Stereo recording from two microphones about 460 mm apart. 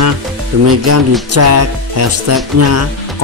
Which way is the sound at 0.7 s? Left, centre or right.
Right.